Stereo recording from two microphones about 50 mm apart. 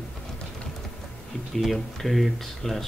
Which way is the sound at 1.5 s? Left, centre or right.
Centre.